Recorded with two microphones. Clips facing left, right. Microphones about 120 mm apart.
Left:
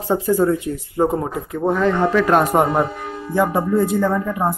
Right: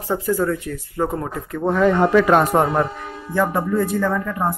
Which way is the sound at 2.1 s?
Centre (ahead or behind).